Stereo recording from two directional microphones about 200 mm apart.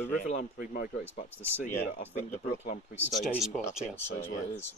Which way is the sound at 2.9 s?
5° right (ahead or behind).